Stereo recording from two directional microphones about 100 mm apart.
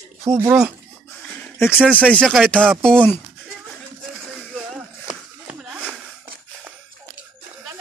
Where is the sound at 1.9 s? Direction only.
10° left (ahead or behind).